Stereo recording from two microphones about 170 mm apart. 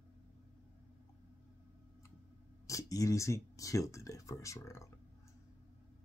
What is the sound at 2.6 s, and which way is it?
Speech, 20° left (ahead or behind).